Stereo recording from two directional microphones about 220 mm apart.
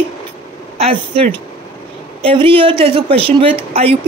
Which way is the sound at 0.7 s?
25° right (ahead or behind).